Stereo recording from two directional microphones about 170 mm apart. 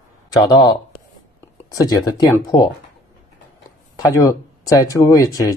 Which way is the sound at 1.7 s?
20° left (ahead or behind).